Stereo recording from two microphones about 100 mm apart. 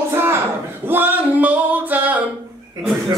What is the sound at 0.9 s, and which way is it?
Singing, 20° right (ahead or behind).